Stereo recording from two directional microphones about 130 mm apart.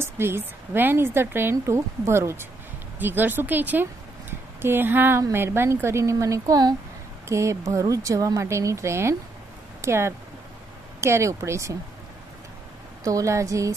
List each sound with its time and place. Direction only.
0.0 s a woman's voice: 20° right (ahead or behind)
13.0 s speech: 25° right (ahead or behind)